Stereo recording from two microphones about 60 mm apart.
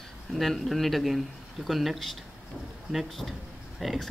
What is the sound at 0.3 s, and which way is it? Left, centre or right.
Speech, centre.